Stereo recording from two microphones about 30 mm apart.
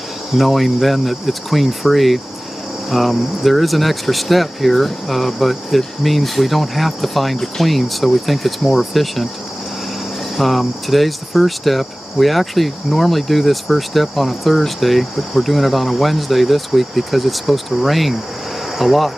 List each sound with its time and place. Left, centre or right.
0.4 s speech: centre
10.3 s speech: centre